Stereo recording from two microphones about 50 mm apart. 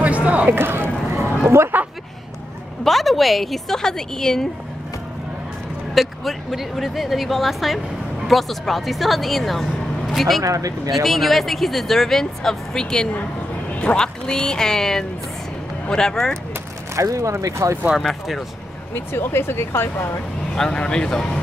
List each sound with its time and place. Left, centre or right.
0.0 s a sound: right
0.5 s a sound: right
1.7 s a sound: right
2.8 s speech: centre
5.9 s speech: centre
16.9 s speech: right
18.0 s speech: centre
18.9 s speech: left
20.5 s speech: centre